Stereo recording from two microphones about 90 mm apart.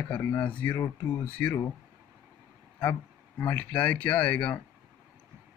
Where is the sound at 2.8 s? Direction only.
25° left (ahead or behind).